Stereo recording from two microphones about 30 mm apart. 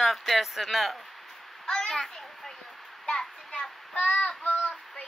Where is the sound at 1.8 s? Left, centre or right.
Centre.